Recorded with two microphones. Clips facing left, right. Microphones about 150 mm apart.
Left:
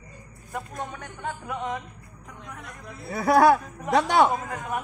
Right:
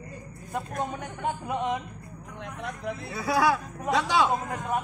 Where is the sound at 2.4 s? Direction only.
90° right.